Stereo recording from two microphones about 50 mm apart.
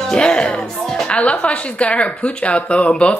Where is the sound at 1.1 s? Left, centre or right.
Left.